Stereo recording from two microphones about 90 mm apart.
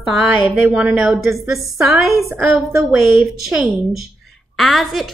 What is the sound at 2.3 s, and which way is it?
Speech, 20° right (ahead or behind).